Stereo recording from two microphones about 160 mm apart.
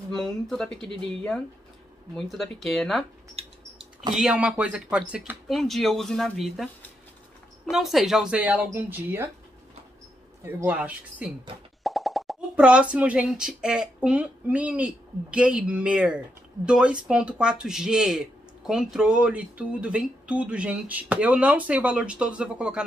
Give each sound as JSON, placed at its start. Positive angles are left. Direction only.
{"t": 0.1, "sound": "speech", "side_deg": 0}
{"t": 3.3, "sound": "mouse", "side_deg": -35}
{"t": 4.1, "sound": "speech", "side_deg": -5}
{"t": 7.7, "sound": "speech", "side_deg": 0}
{"t": 10.4, "sound": "speech", "side_deg": -10}